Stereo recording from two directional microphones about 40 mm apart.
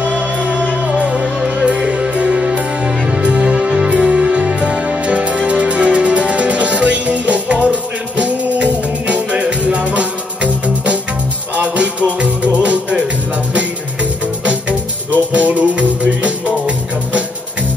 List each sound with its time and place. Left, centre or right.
0.2 s music: right
14.4 s music: right